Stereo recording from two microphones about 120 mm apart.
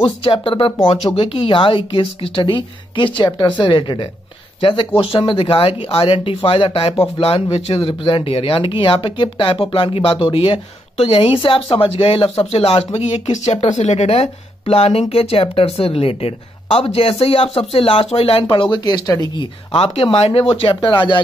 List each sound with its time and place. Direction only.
0.0 s a woman's voice: 50° left (ahead or behind); by 19.4 s 30° left (ahead or behind)
19.7 s speech: 55° left (ahead or behind)